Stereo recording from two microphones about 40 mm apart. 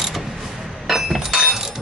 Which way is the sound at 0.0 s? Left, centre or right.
Centre.